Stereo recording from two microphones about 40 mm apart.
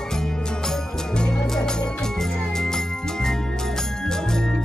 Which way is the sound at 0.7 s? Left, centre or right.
Centre.